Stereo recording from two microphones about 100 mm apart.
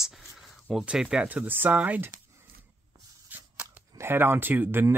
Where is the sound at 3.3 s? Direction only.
20° right (ahead or behind).